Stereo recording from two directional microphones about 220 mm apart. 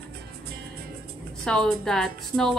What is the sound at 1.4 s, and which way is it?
A woman's voice, 5° left (ahead or behind).